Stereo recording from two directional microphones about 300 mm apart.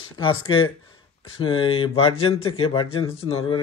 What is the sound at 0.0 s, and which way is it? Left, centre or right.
Speech, centre.